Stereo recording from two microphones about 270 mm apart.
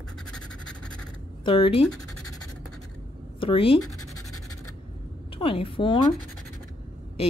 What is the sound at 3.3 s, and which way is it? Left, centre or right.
Speech, centre.